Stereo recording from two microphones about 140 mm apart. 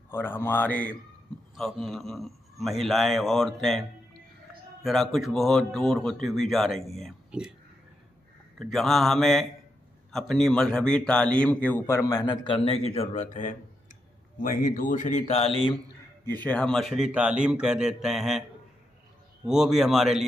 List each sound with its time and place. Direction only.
0.1 s a man's voice: 15° left (ahead or behind)
1.5 s speech: centre (ahead or behind)
4.8 s speech: centre (ahead or behind)
8.5 s a man's voice: centre (ahead or behind); by 15.7 s 45° left (ahead or behind)
16.3 s speech: 10° left (ahead or behind)
19.4 s speech: 5° right (ahead or behind)